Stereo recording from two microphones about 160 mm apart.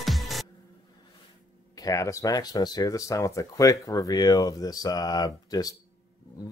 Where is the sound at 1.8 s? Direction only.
20° left (ahead or behind).